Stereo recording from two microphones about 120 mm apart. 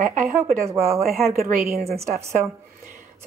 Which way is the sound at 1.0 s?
Centre (ahead or behind).